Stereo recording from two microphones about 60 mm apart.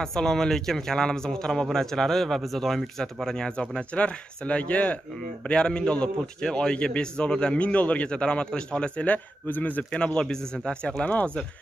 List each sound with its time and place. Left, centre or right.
0.0 s a man's voice: centre